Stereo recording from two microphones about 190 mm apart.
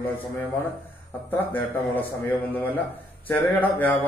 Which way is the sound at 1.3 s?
10° left (ahead or behind).